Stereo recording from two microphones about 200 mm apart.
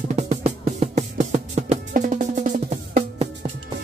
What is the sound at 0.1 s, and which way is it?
Music, 35° right (ahead or behind).